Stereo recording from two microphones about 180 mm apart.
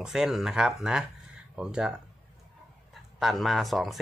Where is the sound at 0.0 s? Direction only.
Centre (ahead or behind).